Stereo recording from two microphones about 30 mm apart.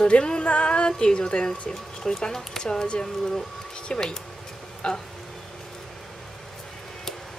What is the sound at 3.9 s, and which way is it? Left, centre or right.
Music, left.